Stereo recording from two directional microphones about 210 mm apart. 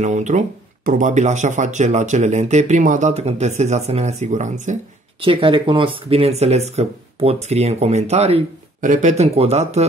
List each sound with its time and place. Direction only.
0.0 s speech: 35° right (ahead or behind)
5.2 s speech: 25° right (ahead or behind)